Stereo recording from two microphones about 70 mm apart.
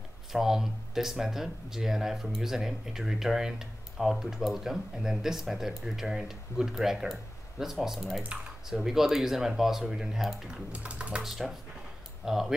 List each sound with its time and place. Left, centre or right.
0.3 s speech: centre
10.7 s typing: centre
11.2 s speech: centre
12.3 s typing: centre